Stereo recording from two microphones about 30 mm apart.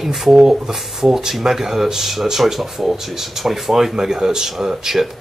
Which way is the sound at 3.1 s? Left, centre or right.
Centre.